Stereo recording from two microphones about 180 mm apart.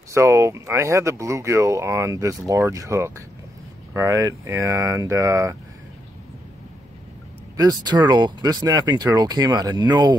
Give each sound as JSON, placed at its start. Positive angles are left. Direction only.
{"t": 0.1, "sound": "speech", "side_deg": -15}
{"t": 7.5, "sound": "speech", "side_deg": -20}